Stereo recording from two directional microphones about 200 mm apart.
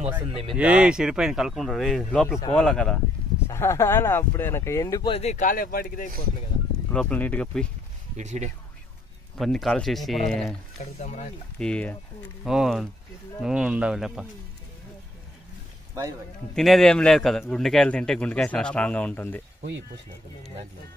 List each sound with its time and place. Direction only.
0.3 s speech: 30° right (ahead or behind)
0.6 s a man's voice: 5° right (ahead or behind); by 5.1 s 15° left (ahead or behind)
5.1 s speech: 35° left (ahead or behind)
6.9 s a man's voice: 5° left (ahead or behind)
8.2 s speech: 35° right (ahead or behind)
9.4 s a man's voice: centre (ahead or behind)
11.0 s speech: 35° left (ahead or behind)
11.5 s a man's voice: 5° left (ahead or behind)
16.5 s a man's voice: centre (ahead or behind)